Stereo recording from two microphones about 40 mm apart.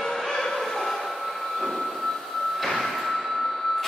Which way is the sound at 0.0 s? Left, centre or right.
Centre.